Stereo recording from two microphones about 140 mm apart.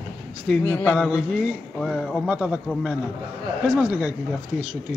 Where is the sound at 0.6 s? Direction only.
15° left (ahead or behind).